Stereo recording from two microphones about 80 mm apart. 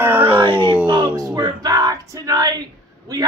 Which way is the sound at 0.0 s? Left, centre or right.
Right.